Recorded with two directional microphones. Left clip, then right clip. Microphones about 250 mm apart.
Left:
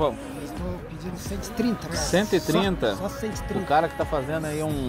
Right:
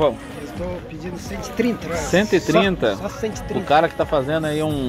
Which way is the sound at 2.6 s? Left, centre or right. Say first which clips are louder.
Right 5 dB; centre.